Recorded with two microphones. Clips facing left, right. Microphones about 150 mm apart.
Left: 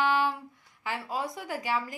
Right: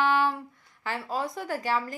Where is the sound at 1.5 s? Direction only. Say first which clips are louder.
Right 3 dB; 10° left (ahead or behind).